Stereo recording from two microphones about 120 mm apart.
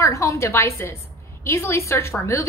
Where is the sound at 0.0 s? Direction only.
25° left (ahead or behind).